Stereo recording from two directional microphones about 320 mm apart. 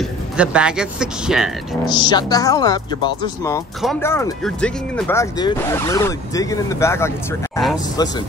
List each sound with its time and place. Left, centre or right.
0.0 s speech: centre
1.9 s speech: centre